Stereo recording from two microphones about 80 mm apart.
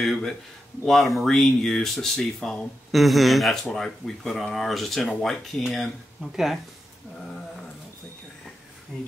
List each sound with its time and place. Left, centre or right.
0.0 s speech: centre